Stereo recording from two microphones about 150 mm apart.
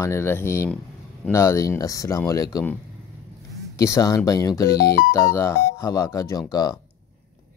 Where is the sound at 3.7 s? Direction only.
20° left (ahead or behind).